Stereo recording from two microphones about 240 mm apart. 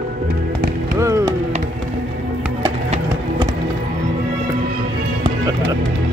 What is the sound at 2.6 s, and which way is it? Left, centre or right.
Run, right.